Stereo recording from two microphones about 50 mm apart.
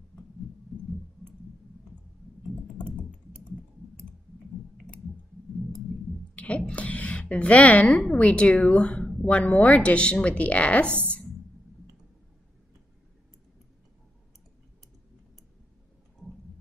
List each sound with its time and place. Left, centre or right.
2.8 s computer keyboard: centre
6.3 s a sound: left
6.7 s speech: left